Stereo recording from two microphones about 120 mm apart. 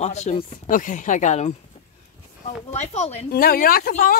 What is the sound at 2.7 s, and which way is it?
Speech, 70° left (ahead or behind).